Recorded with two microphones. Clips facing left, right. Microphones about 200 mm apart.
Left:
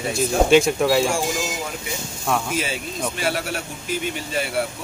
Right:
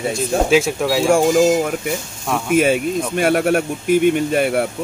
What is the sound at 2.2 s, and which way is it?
Speech, centre (ahead or behind).